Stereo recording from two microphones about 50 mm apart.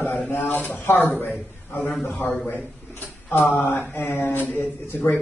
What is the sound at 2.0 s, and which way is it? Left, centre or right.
A man's voice, left.